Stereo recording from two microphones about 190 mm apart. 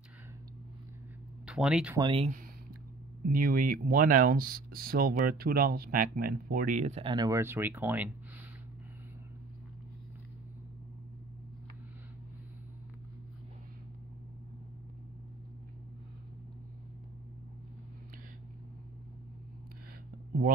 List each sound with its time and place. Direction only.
1.4 s speech: 5° right (ahead or behind)
2.0 s speech: 25° right (ahead or behind)
3.3 s speech: 50° right (ahead or behind); by 8.1 s 10° right (ahead or behind)